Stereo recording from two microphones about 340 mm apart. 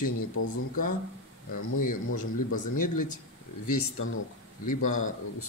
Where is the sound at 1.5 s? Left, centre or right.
Left.